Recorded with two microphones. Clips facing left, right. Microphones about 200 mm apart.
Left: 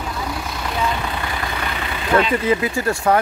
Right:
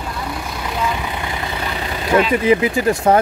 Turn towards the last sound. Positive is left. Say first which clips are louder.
# right 4 dB
turn(degrees=-20)  # may be behind; listen again after turning